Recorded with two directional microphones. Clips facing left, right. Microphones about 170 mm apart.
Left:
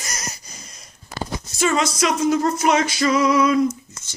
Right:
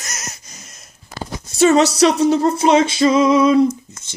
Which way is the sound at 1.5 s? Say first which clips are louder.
Right 8 dB; 35° right (ahead or behind).